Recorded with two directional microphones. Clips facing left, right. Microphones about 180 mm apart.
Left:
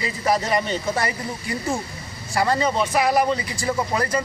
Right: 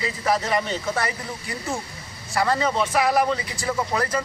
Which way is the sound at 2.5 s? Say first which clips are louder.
Left 1 dB; centre (ahead or behind).